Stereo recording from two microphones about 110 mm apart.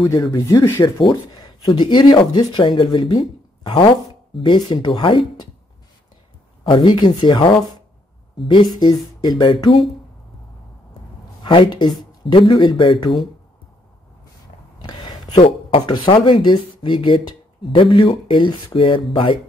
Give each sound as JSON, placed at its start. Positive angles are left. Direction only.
{"t": 0.3, "sound": "speech", "side_deg": 30}
{"t": 0.8, "sound": "speech", "side_deg": 45}
{"t": 6.6, "sound": "speech", "side_deg": 45}
{"t": 11.4, "sound": "speech", "side_deg": 50}
{"t": 14.8, "sound": "a sound", "side_deg": 45}
{"t": 15.4, "sound": "speech", "side_deg": 50}